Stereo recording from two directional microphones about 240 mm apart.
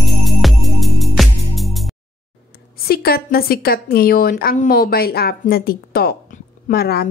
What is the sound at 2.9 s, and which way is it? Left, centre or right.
A woman's voice, left.